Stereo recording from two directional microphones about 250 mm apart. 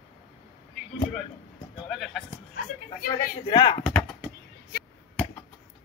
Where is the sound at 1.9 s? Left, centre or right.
Centre.